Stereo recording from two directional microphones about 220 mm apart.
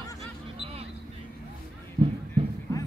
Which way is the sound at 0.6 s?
25° right (ahead or behind).